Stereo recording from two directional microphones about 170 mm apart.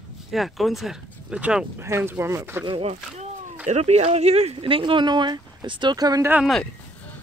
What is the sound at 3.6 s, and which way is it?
Speech, 40° right (ahead or behind).